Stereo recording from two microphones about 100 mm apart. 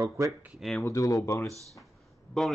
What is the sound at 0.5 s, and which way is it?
Speech, centre (ahead or behind).